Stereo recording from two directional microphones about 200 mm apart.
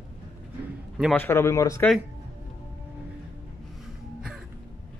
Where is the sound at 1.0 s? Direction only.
5° left (ahead or behind).